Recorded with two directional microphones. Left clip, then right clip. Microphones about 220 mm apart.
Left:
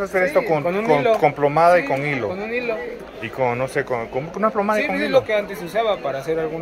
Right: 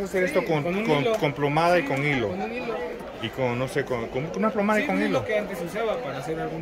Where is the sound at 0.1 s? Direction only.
10° right (ahead or behind).